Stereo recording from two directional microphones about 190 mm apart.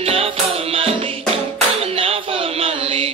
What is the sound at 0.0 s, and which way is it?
Music, 30° right (ahead or behind).